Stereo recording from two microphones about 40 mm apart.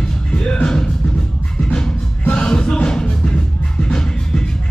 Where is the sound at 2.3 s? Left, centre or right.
Centre.